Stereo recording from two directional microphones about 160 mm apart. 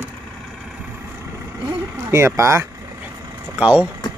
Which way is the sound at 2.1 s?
15° right (ahead or behind).